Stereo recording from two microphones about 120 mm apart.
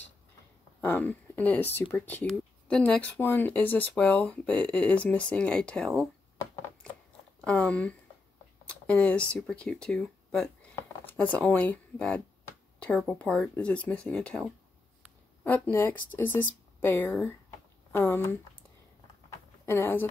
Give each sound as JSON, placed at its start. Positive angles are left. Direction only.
{"t": 0.7, "sound": "speech", "side_deg": 15}
{"t": 7.4, "sound": "speech", "side_deg": 10}
{"t": 8.6, "sound": "a sound", "side_deg": 10}
{"t": 9.3, "sound": "speech", "side_deg": 5}
{"t": 15.4, "sound": "speech", "side_deg": 15}
{"t": 19.6, "sound": "speech", "side_deg": 20}